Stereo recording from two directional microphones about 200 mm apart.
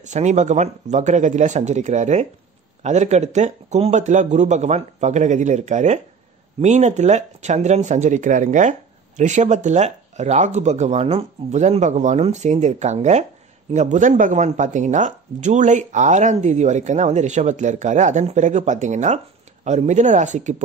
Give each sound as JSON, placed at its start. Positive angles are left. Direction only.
{"t": 0.0, "sound": "speech", "side_deg": -35}